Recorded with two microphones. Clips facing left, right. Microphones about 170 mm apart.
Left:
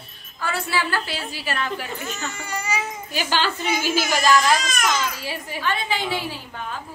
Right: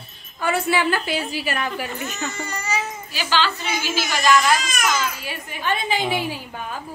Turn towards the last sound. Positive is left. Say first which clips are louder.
# right 3 dB
turn(degrees=-15)  # may be behind; listen again after turning